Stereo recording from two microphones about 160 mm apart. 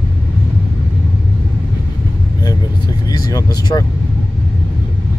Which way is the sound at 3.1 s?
25° left (ahead or behind).